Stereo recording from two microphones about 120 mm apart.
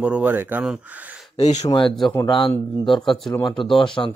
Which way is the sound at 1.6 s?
45° left (ahead or behind).